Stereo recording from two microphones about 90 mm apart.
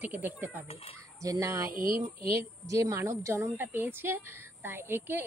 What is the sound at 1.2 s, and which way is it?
A woman's voice, 40° right (ahead or behind).